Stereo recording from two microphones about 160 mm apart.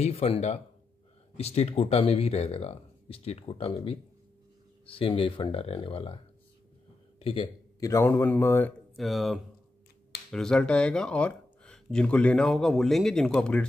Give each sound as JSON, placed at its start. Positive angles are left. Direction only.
{"t": 0.0, "sound": "speech", "side_deg": 40}
{"t": 7.2, "sound": "a man's voice", "side_deg": 35}
{"t": 7.8, "sound": "a man's voice", "side_deg": 15}
{"t": 8.9, "sound": "speech", "side_deg": 0}